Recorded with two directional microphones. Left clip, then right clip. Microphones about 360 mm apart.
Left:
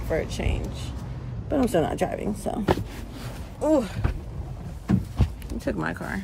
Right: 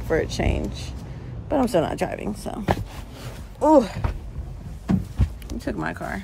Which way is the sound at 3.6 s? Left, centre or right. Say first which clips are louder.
Right 6 dB; centre.